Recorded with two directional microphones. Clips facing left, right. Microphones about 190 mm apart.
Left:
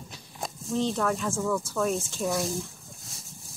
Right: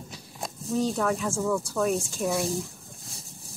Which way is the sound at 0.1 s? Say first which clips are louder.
Left 2 dB; centre (ahead or behind).